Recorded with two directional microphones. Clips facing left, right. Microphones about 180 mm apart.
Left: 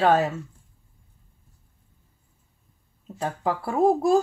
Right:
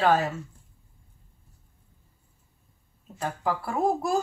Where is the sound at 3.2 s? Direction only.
25° left (ahead or behind).